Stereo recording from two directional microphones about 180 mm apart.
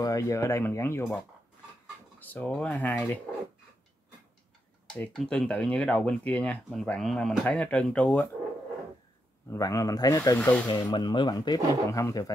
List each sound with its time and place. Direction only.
0.0 s speech: 20° left (ahead or behind)
2.1 s speech: 10° left (ahead or behind)
4.9 s speech: 5° left (ahead or behind)
9.5 s speech: 20° left (ahead or behind)
10.3 s speech: 10° left (ahead or behind)
10.7 s speech: 25° left (ahead or behind)